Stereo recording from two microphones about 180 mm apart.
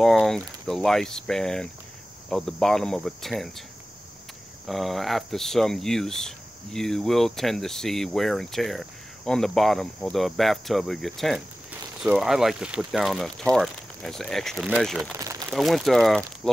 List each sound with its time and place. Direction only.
0.0 s speech: centre (ahead or behind)
4.6 s speech: centre (ahead or behind)
15.1 s a sound: 15° right (ahead or behind)
15.5 s speech: centre (ahead or behind)